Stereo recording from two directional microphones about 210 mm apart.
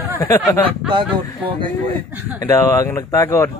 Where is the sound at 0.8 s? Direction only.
25° right (ahead or behind).